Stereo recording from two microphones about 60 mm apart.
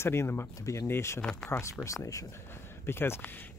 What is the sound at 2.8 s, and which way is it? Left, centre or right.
Speech, left.